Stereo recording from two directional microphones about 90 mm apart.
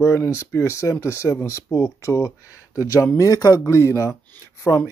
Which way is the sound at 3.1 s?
45° left (ahead or behind).